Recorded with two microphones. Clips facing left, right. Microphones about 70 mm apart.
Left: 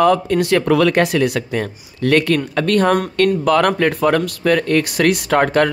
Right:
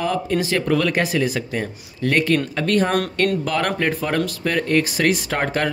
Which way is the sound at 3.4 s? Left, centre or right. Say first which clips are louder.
Left 7 dB; left.